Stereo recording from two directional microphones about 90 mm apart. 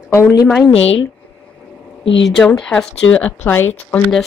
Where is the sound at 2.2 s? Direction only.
5° left (ahead or behind); by 4.0 s 25° left (ahead or behind).